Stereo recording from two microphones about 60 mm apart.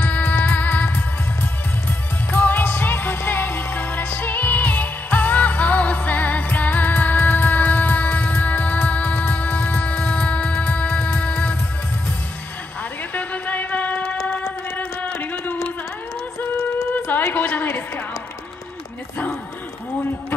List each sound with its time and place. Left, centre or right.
0.0 s music: left
2.3 s music: left
13.1 s music: left
17.3 s a sound: left